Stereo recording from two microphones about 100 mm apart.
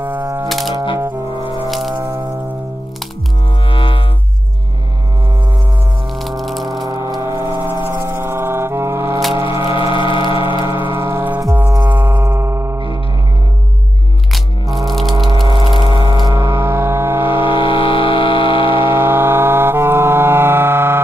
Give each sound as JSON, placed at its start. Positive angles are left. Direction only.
{"t": 0.0, "sound": "typewriter", "side_deg": -20}
{"t": 0.5, "sound": "music", "side_deg": 0}
{"t": 3.6, "sound": "music", "side_deg": 60}
{"t": 6.1, "sound": "crushing", "side_deg": 0}
{"t": 6.9, "sound": "a sound", "side_deg": -40}
{"t": 7.2, "sound": "vehicle", "side_deg": -25}
{"t": 9.4, "sound": "a sound", "side_deg": 60}
{"t": 11.1, "sound": "music", "side_deg": -20}
{"t": 11.7, "sound": "a sound", "side_deg": -20}
{"t": 14.3, "sound": "music", "side_deg": 0}
{"t": 15.2, "sound": "a sound", "side_deg": -50}
{"t": 16.3, "sound": "music", "side_deg": -25}
{"t": 17.3, "sound": "vehicle", "side_deg": 60}
{"t": 18.9, "sound": "music", "side_deg": -25}